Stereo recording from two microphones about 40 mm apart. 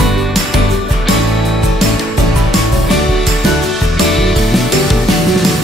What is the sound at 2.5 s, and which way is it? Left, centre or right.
Music, centre.